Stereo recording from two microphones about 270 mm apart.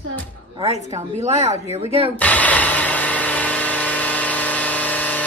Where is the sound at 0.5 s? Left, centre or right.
Right.